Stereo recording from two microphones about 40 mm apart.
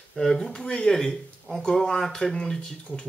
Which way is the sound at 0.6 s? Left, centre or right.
Left.